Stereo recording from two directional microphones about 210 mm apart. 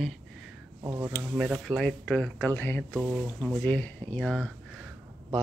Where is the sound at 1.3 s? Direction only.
Centre (ahead or behind).